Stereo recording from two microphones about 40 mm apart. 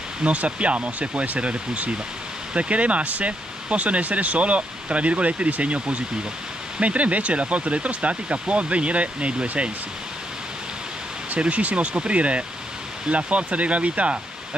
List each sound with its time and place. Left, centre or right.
0.2 s speech: right
11.3 s speech: right